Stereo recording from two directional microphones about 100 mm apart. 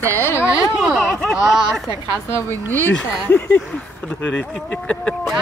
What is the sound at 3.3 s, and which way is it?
Speech, 20° left (ahead or behind).